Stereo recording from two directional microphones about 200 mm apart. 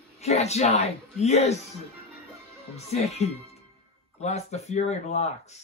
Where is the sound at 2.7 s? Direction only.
30° left (ahead or behind).